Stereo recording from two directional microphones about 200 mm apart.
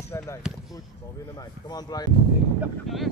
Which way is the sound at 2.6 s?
Centre (ahead or behind).